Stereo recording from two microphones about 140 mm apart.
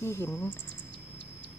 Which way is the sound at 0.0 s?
20° left (ahead or behind).